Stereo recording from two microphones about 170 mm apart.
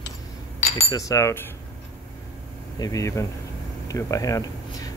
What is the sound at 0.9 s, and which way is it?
Speech, 20° left (ahead or behind).